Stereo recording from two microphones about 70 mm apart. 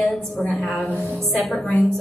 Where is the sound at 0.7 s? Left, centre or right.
Left.